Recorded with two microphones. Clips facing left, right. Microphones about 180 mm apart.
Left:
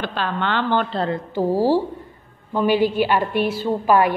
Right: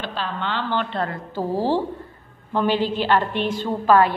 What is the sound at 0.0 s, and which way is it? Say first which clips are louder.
Speech: left 4 dB; 60° left (ahead or behind).